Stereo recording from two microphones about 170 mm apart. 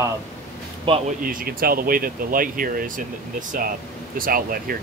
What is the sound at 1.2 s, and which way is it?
Speech, 60° right (ahead or behind).